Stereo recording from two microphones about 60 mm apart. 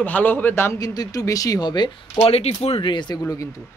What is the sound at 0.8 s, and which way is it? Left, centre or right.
Speech, left.